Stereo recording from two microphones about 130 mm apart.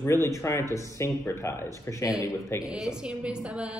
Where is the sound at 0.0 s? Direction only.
20° left (ahead or behind).